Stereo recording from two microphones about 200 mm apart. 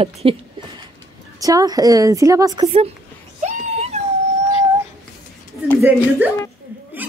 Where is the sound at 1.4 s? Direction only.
15° right (ahead or behind).